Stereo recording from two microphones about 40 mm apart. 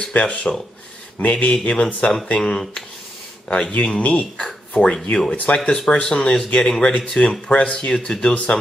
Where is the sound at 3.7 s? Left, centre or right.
Left.